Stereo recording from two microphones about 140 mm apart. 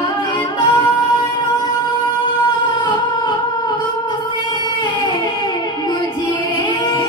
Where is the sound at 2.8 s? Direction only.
30° left (ahead or behind).